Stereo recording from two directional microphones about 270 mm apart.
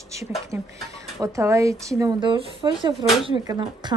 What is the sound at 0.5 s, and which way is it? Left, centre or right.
A woman's voice, centre.